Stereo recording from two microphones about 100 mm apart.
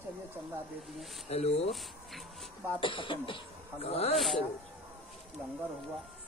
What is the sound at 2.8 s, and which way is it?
Speech, 55° left (ahead or behind).